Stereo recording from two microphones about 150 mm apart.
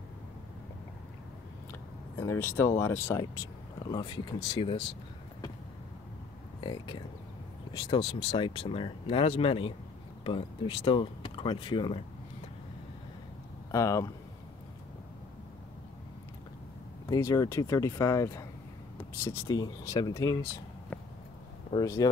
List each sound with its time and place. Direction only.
1.7 s a sound: 20° left (ahead or behind)
2.8 s speech: 15° left (ahead or behind)
3.8 s speech: 30° left (ahead or behind)
6.6 s speech: 30° left (ahead or behind)
8.0 s speech: 40° left (ahead or behind)
13.7 s speech: 20° left (ahead or behind)
17.1 s speech: 20° left (ahead or behind)
21.7 s speech: 25° left (ahead or behind)